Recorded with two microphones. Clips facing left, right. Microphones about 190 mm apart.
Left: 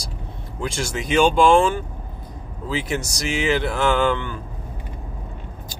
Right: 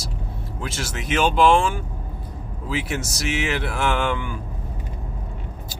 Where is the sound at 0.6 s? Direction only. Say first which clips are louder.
Left 5 dB; 5° right (ahead or behind).